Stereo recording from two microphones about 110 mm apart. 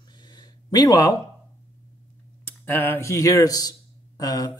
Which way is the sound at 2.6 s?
20° left (ahead or behind).